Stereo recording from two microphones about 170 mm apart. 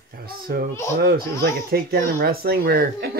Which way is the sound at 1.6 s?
60° right (ahead or behind).